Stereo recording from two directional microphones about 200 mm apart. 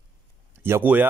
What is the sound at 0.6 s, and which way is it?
Speech, 10° right (ahead or behind).